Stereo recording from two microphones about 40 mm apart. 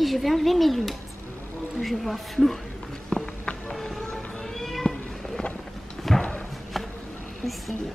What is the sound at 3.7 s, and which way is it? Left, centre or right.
Music, centre.